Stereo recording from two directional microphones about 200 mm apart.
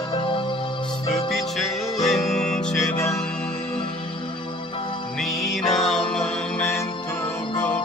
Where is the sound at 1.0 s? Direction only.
Centre (ahead or behind).